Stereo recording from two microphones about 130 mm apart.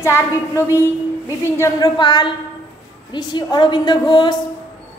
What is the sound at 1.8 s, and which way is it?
A woman's voice, 35° left (ahead or behind).